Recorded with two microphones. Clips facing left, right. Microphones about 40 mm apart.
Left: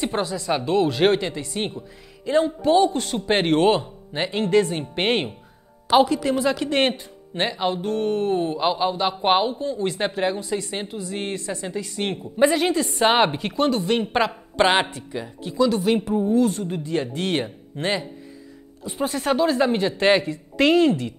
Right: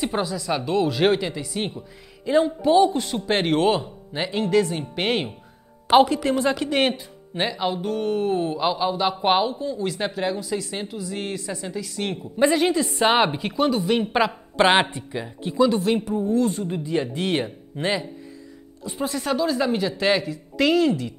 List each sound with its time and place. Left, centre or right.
0.0 s a woman's voice: centre
5.9 s a woman's voice: centre
6.8 s a woman's voice: centre
12.4 s a woman's voice: centre
14.6 s speech: centre
15.8 s a woman's voice: centre
19.0 s speech: left